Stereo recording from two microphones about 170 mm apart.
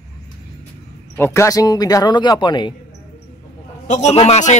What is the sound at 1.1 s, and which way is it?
Speech, 15° left (ahead or behind).